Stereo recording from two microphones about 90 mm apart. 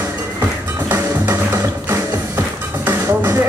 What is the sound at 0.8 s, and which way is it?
Music, 25° right (ahead or behind).